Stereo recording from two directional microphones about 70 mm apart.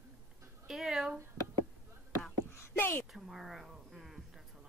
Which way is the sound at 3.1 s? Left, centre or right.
Centre.